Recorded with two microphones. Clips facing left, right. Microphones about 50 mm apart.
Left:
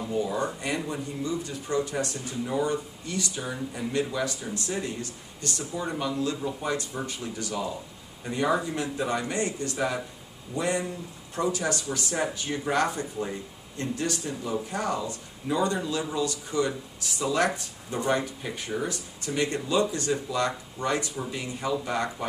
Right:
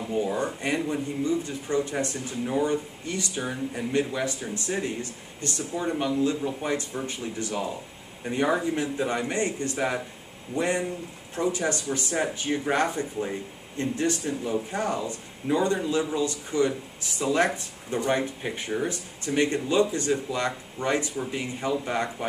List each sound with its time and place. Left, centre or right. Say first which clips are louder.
0.1 s speech: right 1 dB; right